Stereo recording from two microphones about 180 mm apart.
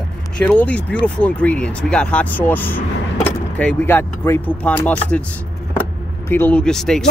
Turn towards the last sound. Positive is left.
turn(degrees=5)  # may be behind; listen again after turning